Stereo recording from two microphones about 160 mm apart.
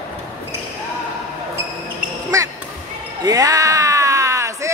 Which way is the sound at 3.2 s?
20° right (ahead or behind).